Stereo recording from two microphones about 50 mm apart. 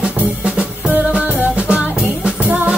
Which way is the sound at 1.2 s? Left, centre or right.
Right.